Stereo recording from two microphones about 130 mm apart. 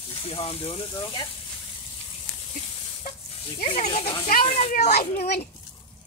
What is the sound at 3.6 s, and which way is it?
Speech, 75° left (ahead or behind).